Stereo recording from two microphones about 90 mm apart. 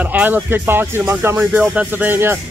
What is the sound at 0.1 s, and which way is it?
Speech, 20° right (ahead or behind).